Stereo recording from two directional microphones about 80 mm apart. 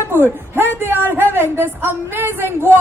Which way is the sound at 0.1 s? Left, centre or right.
Right.